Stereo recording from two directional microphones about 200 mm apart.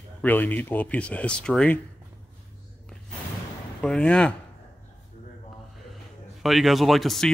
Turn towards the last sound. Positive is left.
turn(degrees=0)  # may be behind; listen again after turning